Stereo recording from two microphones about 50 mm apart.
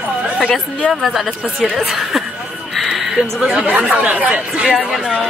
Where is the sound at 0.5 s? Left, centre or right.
Left.